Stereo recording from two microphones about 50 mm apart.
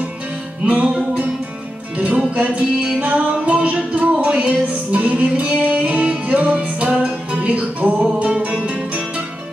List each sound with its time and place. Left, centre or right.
0.7 s music: right
2.0 s music: right